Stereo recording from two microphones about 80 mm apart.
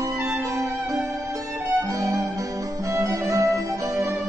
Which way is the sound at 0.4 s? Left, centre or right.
Right.